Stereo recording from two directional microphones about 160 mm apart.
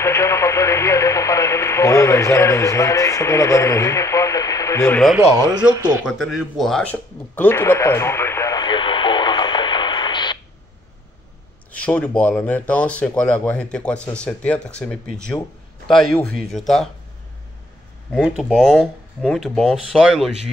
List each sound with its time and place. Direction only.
0.0 s speech: 15° left (ahead or behind)
5.6 s speech: 10° right (ahead or behind)
6.0 s a sound: centre (ahead or behind); by 10.4 s 30° left (ahead or behind)
11.7 s speech: 10° left (ahead or behind)
18.1 s speech: centre (ahead or behind)